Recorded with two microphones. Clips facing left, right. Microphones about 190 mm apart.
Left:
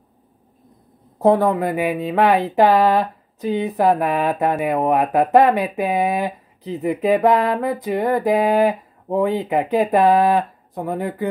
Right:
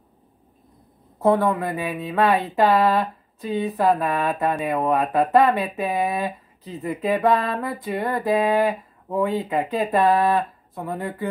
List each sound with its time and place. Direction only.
1.5 s speech: 20° left (ahead or behind)
6.0 s a sound: 20° left (ahead or behind)
10.8 s speech: 20° left (ahead or behind)